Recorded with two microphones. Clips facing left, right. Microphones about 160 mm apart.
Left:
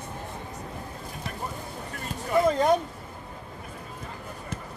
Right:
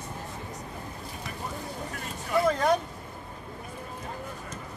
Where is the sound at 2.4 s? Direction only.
20° left (ahead or behind).